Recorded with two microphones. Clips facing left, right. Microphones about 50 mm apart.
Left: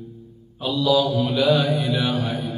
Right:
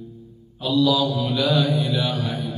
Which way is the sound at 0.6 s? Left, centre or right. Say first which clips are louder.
Even; centre.